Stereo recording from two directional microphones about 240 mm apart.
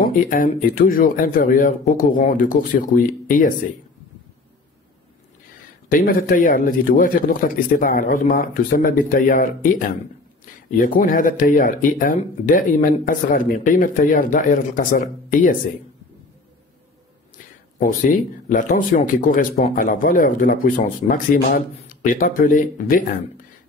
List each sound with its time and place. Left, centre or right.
0.0 s speech: left
5.9 s speech: left
17.7 s speech: left